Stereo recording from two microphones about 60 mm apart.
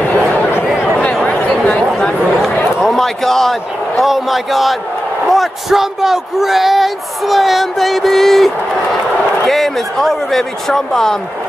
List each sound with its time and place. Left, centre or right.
1.7 s chatter: centre
2.8 s a man's voice: centre
9.5 s speech: centre